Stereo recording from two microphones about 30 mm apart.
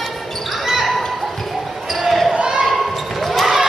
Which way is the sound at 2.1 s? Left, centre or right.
Centre.